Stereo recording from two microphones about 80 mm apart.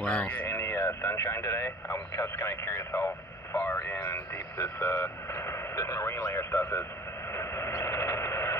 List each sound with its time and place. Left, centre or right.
0.0 s speech: centre
0.5 s speech: left
7.3 s a sound: left